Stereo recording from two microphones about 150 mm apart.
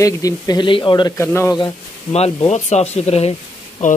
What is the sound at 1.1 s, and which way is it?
Speech, 15° left (ahead or behind).